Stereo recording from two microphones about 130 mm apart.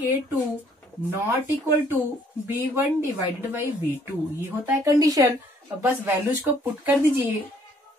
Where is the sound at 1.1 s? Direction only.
15° right (ahead or behind).